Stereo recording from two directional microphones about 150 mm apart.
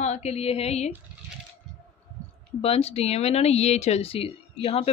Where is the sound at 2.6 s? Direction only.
40° left (ahead or behind).